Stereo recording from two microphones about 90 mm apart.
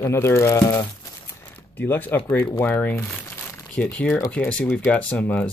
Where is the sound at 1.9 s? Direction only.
20° left (ahead or behind).